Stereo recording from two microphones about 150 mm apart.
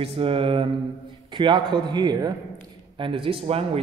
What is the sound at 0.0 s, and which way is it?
A man's voice, 40° right (ahead or behind).